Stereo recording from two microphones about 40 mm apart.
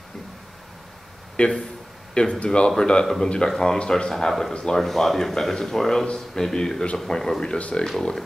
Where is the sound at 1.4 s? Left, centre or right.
Left.